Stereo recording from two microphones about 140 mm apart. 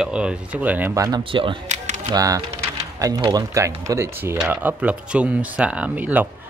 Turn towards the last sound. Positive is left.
turn(degrees=-10)  # may be behind; listen again after turning